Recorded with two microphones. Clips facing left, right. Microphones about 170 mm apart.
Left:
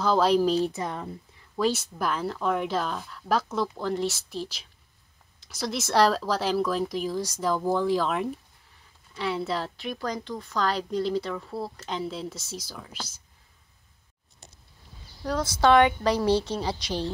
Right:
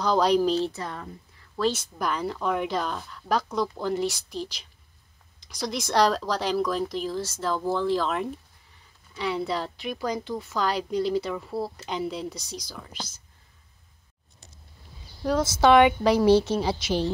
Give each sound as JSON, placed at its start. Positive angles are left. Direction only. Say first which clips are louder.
{"t": 0.0, "sound": "a woman's voice", "louder": "even", "side_deg": 5}
{"t": 0.7, "sound": "a woman's voice", "louder": "left 2 dB", "side_deg": 20}
{"t": 1.6, "sound": "a woman's voice", "louder": "even", "side_deg": 10}
{"t": 15.2, "sound": "a woman's voice", "louder": "right 2 dB", "side_deg": -10}